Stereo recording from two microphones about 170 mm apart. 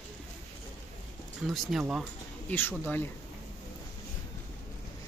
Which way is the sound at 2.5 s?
10° left (ahead or behind).